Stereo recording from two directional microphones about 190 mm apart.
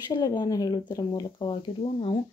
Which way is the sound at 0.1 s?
25° left (ahead or behind).